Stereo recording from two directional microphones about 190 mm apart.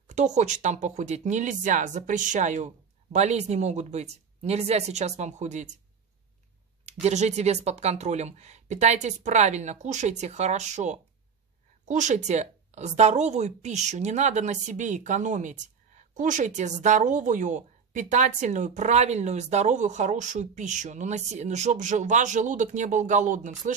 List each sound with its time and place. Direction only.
0.1 s a woman's voice: 40° right (ahead or behind)
6.9 s a woman's voice: 35° right (ahead or behind)